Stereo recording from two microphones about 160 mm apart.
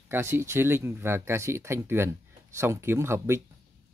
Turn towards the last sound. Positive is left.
turn(degrees=-15)  # may be behind; listen again after turning